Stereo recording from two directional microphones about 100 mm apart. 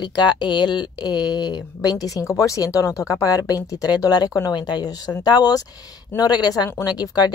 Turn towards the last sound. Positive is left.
turn(degrees=40)  # may be behind; listen again after turning